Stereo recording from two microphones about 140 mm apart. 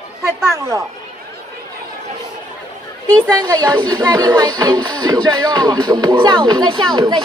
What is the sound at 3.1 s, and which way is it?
Music, 30° right (ahead or behind).